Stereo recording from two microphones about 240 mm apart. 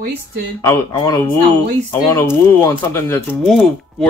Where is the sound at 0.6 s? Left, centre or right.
Centre.